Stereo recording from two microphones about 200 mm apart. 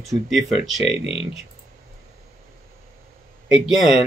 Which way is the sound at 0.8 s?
30° left (ahead or behind).